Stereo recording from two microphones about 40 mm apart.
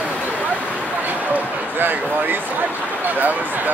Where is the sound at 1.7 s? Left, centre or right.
Right.